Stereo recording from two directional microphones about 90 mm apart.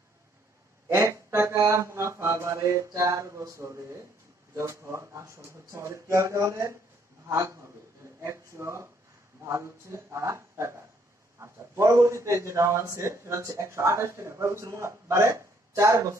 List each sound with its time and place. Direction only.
0.8 s a sound: 30° right (ahead or behind)
1.7 s mantra: 35° right (ahead or behind)
4.6 s a man's voice: 30° right (ahead or behind)